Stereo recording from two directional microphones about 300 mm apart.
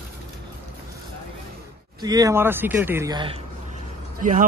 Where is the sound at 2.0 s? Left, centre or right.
Centre.